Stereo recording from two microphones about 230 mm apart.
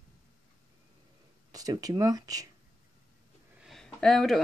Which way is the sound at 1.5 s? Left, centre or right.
Centre.